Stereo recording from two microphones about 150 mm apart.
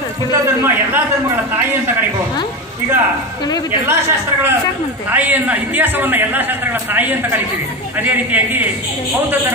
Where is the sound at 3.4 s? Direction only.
25° left (ahead or behind).